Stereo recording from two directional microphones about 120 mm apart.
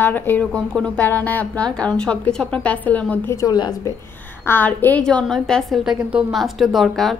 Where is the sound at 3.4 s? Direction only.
30° left (ahead or behind).